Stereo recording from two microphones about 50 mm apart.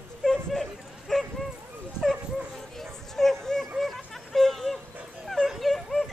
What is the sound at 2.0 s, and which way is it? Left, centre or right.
Dog, centre.